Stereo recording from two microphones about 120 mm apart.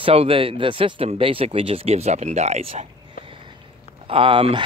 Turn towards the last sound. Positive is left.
turn(degrees=-45)  # may be behind; listen again after turning